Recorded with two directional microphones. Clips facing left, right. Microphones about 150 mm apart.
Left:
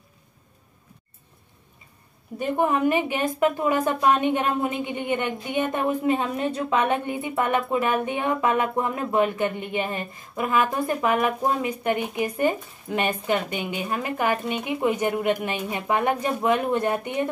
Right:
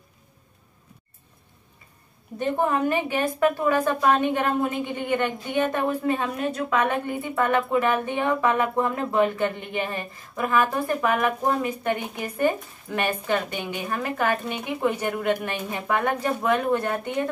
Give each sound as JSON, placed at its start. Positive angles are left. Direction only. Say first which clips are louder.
{"t": 2.3, "sound": "a woman's voice", "louder": "left 1 dB", "side_deg": 10}